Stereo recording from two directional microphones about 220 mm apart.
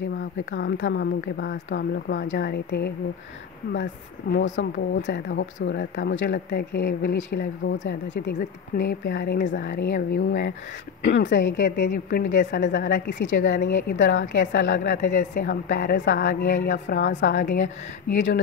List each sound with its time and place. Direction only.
0.2 s a woman's voice: 55° left (ahead or behind)